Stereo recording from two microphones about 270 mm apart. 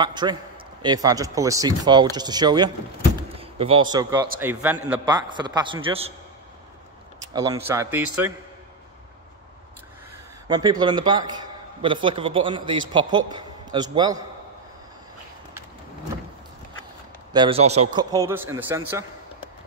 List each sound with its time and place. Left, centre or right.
0.0 s a man's voice: centre
7.3 s a man's voice: centre
10.5 s a man's voice: centre
17.3 s a man's voice: centre
18.1 s a man's voice: centre